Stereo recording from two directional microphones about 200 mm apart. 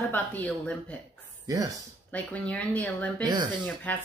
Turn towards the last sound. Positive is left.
turn(degrees=5)  # may be behind; listen again after turning